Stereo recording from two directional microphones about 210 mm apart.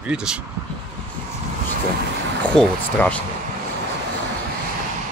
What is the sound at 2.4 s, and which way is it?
Speech, 5° left (ahead or behind).